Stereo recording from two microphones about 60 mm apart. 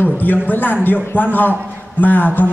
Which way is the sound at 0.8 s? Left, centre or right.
Left.